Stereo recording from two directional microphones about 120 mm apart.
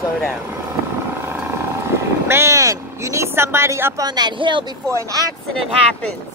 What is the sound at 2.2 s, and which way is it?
Speech, 20° right (ahead or behind).